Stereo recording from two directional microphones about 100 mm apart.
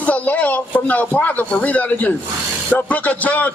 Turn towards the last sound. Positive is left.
turn(degrees=15)  # may be behind; listen again after turning